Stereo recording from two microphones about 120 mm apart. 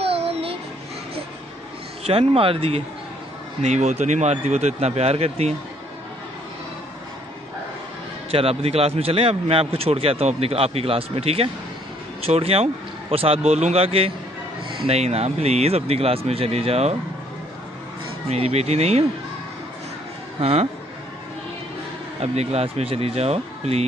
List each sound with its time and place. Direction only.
0.0 s a sound: 55° right (ahead or behind)
2.0 s a man's voice: 50° right (ahead or behind)
3.6 s speech: 70° right (ahead or behind)
8.3 s a man's voice: 50° right (ahead or behind)
18.3 s speech: 60° right (ahead or behind)
20.3 s a man's voice: 55° right (ahead or behind)
22.2 s speech: 65° right (ahead or behind)